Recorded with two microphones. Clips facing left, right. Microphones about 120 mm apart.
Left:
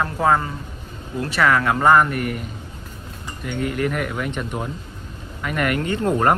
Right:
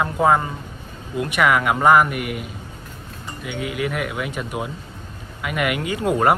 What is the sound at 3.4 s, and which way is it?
Speech, 5° right (ahead or behind).